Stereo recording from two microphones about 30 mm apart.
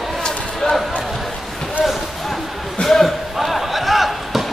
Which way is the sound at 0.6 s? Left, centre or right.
Left.